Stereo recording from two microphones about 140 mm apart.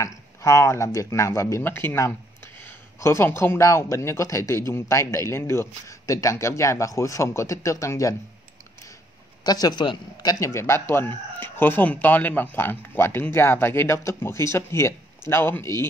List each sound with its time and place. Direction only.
0.0 s speech: 20° left (ahead or behind)
9.4 s speech: 30° left (ahead or behind)
10.4 s speech: 20° left (ahead or behind)